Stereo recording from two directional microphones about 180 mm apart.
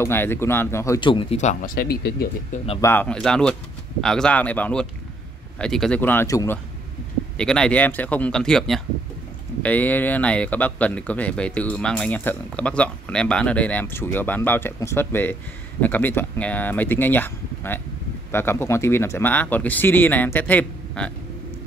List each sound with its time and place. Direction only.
0.0 s speech: 10° left (ahead or behind); by 1.4 s 30° left (ahead or behind)
1.4 s speech: 40° left (ahead or behind)
1.8 s speech: 60° left (ahead or behind)
2.5 s speech: 30° left (ahead or behind)
2.8 s a man's voice: 10° left (ahead or behind)
7.3 s a man's voice: 5° left (ahead or behind)